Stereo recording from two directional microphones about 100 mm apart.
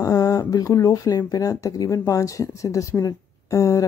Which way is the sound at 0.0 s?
35° left (ahead or behind).